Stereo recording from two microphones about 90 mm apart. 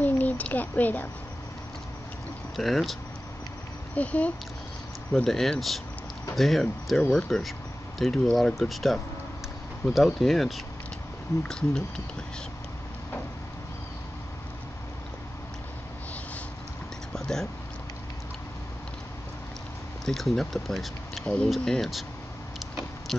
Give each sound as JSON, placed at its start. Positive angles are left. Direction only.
{"t": 0.0, "sound": "a sound", "side_deg": 15}
{"t": 2.5, "sound": "speech", "side_deg": 0}
{"t": 3.9, "sound": "speech", "side_deg": 15}
{"t": 5.1, "sound": "speech", "side_deg": 5}
{"t": 17.1, "sound": "a sound", "side_deg": 5}
{"t": 20.1, "sound": "speech", "side_deg": 5}